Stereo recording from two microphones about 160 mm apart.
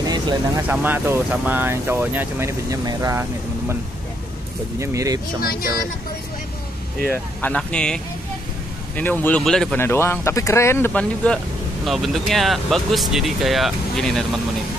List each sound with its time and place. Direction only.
0.0 s vehicle: 25° right (ahead or behind)
0.6 s speech: 10° right (ahead or behind)
4.7 s speech: 20° right (ahead or behind)
5.4 s speech: 65° left (ahead or behind)
7.1 s speech: 10° left (ahead or behind)
9.8 s speech: 15° left (ahead or behind)